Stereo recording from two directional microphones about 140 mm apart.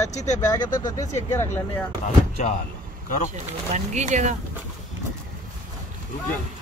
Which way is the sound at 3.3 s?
60° right (ahead or behind).